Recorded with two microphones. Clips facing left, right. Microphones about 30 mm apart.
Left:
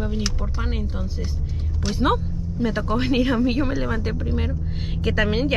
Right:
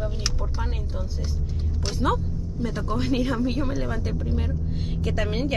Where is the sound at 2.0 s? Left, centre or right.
Left.